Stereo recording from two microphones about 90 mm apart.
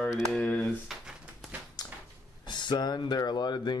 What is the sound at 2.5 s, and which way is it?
Speech, 60° left (ahead or behind).